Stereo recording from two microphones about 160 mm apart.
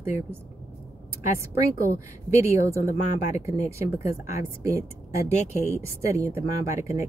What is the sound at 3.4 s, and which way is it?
Speech, 15° right (ahead or behind).